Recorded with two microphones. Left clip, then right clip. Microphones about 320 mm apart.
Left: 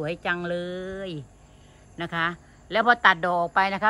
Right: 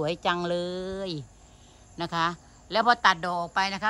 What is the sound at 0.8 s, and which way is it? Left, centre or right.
A woman's voice, centre.